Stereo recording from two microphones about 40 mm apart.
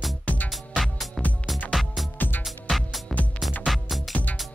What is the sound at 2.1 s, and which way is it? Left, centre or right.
Music, left.